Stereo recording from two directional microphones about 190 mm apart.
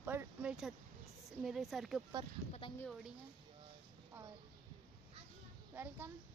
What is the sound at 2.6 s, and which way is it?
Speech, 25° left (ahead or behind).